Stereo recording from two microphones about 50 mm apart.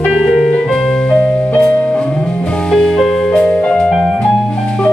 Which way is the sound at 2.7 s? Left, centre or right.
Centre.